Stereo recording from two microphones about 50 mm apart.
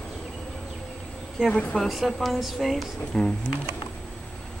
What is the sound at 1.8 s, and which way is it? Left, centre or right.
Speech, centre.